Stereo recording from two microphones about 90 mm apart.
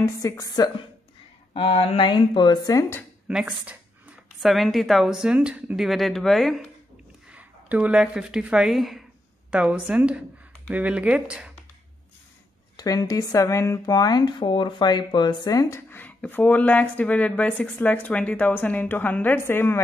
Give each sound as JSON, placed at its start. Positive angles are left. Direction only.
{"t": 0.0, "sound": "speech", "side_deg": 40}
{"t": 1.5, "sound": "speech", "side_deg": 85}
{"t": 2.0, "sound": "a woman's voice", "side_deg": 55}
{"t": 3.3, "sound": "a woman's voice", "side_deg": -10}
{"t": 5.9, "sound": "a woman's voice", "side_deg": 0}
{"t": 7.2, "sound": "speech", "side_deg": -15}
{"t": 9.5, "sound": "speech", "side_deg": -15}
{"t": 12.7, "sound": "speech", "side_deg": 45}
{"t": 15.9, "sound": "a woman's voice", "side_deg": 15}